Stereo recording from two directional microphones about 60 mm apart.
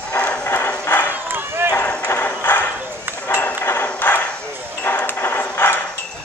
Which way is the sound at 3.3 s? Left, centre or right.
Left.